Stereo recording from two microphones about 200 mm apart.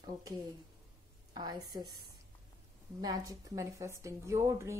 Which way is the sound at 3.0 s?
20° right (ahead or behind).